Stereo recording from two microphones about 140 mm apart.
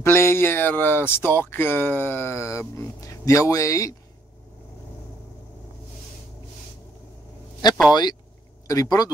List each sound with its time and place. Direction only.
0.0 s speech: 15° left (ahead or behind)
7.9 s speech: 30° left (ahead or behind)